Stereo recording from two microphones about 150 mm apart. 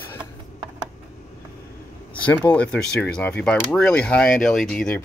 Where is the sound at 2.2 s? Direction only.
10° left (ahead or behind).